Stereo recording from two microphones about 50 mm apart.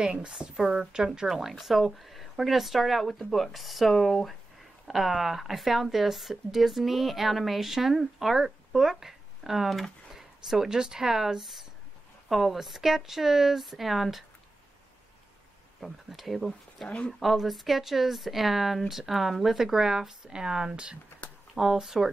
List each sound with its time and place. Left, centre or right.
0.0 s a woman's voice: centre
15.8 s a woman's voice: centre